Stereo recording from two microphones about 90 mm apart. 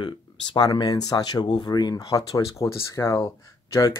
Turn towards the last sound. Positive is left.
turn(degrees=35)  # may be behind; listen again after turning